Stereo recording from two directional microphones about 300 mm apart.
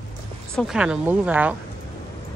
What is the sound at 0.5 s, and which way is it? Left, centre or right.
Speech, centre.